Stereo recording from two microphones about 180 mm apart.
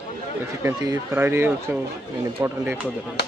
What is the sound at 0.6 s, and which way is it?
Speech, 15° right (ahead or behind).